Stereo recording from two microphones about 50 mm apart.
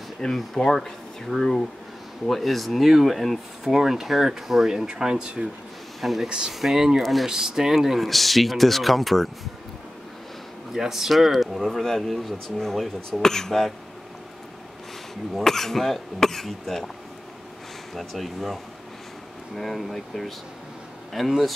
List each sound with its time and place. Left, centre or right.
0.2 s speech: centre
5.9 s speech: centre
6.2 s speech: centre
10.7 s speech: centre
15.4 s speech: centre
17.9 s speech: centre